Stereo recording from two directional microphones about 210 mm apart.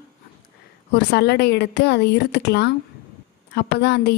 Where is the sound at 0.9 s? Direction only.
50° left (ahead or behind).